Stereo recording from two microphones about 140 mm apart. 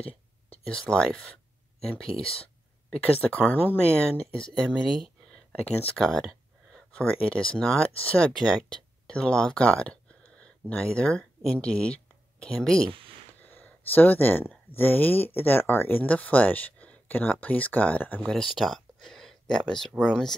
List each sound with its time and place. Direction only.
0.7 s speech: 5° left (ahead or behind)
2.2 s speech: 45° left (ahead or behind)
2.9 s speech: 10° left (ahead or behind)
4.6 s speech: 5° right (ahead or behind)
5.5 s speech: 10° left (ahead or behind)
13.3 s a sound: 10° left (ahead or behind)
14.8 s speech: 15° left (ahead or behind)